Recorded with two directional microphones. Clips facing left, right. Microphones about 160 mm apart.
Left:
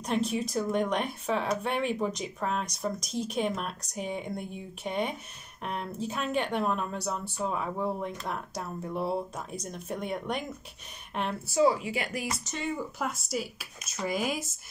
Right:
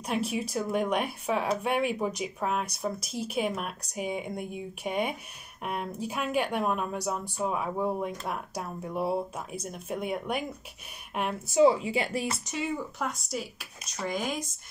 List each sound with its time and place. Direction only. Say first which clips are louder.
0.0 s speech: left 1 dB; 10° right (ahead or behind)
11.4 s speech: right 3 dB; 20° right (ahead or behind)
12.4 s speech: right 1 dB; 5° right (ahead or behind)